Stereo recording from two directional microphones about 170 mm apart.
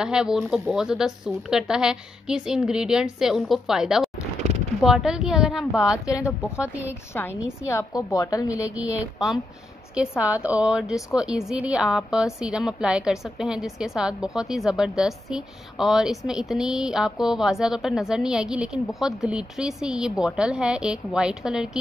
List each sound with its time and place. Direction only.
0.0 s a woman's voice: 5° right (ahead or behind)
4.4 s a sound: 40° right (ahead or behind)
4.8 s a woman's voice: centre (ahead or behind)
7.7 s a woman's voice: 20° left (ahead or behind)
9.9 s a woman's voice: 5° right (ahead or behind)